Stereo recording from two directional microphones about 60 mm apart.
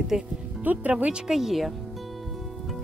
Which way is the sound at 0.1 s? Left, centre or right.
Centre.